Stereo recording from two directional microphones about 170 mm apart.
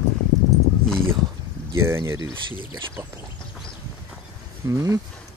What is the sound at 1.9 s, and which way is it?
Speech, 15° right (ahead or behind).